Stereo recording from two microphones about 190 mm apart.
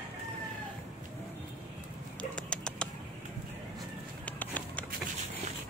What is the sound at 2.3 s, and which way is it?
Bird, 5° left (ahead or behind).